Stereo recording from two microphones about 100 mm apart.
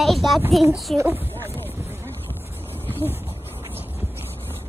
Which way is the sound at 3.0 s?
20° right (ahead or behind).